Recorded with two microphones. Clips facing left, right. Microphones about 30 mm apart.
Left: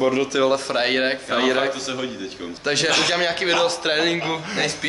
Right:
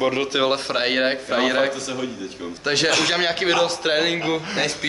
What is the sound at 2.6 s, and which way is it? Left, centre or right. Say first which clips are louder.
A man's voice: even; centre.